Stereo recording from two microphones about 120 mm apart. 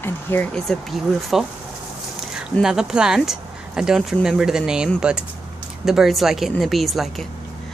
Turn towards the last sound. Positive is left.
turn(degrees=0)  # may be behind; listen again after turning